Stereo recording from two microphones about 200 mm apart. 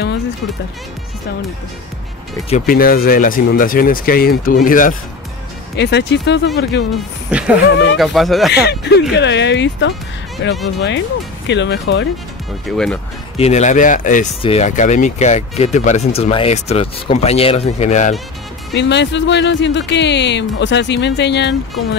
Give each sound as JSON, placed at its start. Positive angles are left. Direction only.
{"t": 2.6, "sound": "speech", "side_deg": 50}
{"t": 5.8, "sound": "speech", "side_deg": 60}
{"t": 7.2, "sound": "a sound", "side_deg": -5}
{"t": 8.0, "sound": "speech", "side_deg": 0}
{"t": 8.5, "sound": "speech", "side_deg": 55}
{"t": 12.6, "sound": "speech", "side_deg": 5}
{"t": 13.4, "sound": "speech", "side_deg": 35}
{"t": 18.7, "sound": "speech", "side_deg": 60}